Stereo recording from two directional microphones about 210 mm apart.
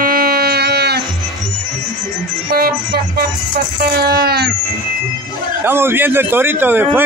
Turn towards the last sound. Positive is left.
turn(degrees=-10)  # may be behind; listen again after turning